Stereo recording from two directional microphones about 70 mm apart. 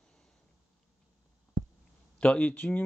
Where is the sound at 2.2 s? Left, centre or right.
Left.